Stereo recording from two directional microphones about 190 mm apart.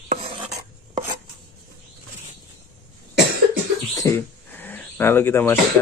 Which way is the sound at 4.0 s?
10° left (ahead or behind).